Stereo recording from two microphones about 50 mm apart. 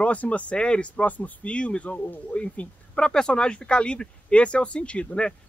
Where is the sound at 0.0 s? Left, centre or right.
Left.